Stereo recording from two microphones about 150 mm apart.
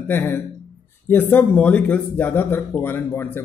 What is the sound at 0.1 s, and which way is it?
A man's voice, 15° left (ahead or behind).